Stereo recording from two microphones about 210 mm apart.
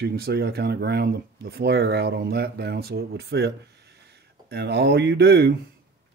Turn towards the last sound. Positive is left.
turn(degrees=-50)  # may be behind; listen again after turning